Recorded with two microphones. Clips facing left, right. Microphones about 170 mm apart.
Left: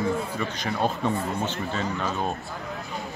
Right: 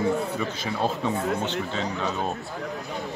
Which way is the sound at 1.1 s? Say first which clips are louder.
Right 2 dB; 70° right (ahead or behind).